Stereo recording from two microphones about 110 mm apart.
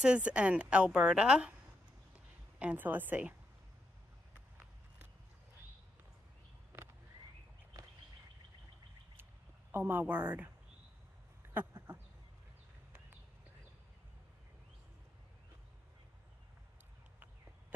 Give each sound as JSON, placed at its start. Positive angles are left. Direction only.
{"t": 0.0, "sound": "a woman's voice", "side_deg": -10}
{"t": 2.1, "sound": "a sound", "side_deg": -15}
{"t": 9.7, "sound": "speech", "side_deg": -20}